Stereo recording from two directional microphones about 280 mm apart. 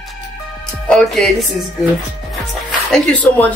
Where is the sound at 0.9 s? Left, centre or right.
Centre.